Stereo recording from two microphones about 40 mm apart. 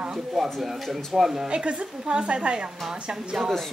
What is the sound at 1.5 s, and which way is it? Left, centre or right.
A woman's voice, right.